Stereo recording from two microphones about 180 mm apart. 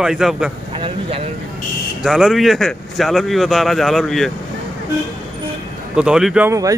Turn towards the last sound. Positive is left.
turn(degrees=-5)  # may be behind; listen again after turning